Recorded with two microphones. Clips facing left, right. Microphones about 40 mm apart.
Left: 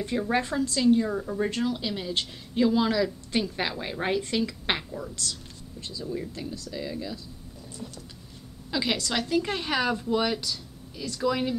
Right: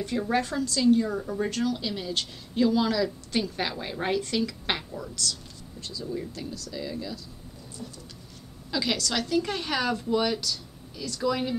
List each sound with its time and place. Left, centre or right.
0.3 s a woman's voice: centre
5.3 s a sound: centre
6.5 s speech: left
6.8 s a woman's voice: centre
8.7 s a woman's voice: centre